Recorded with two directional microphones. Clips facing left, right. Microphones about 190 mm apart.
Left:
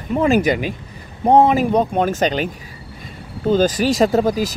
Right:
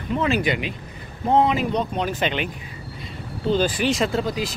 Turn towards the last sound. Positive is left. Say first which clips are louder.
# left 7 dB
turn(degrees=40)  # may be behind; listen again after turning